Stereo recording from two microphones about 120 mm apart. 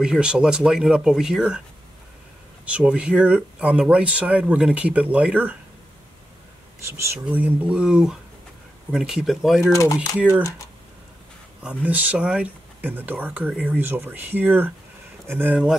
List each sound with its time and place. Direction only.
0.0 s speech: 5° right (ahead or behind)
2.6 s speech: 10° right (ahead or behind)
6.9 s speech: 25° right (ahead or behind)
7.2 s speech: 10° right (ahead or behind)
9.6 s speech: 25° left (ahead or behind)
11.8 s speech: 15° right (ahead or behind)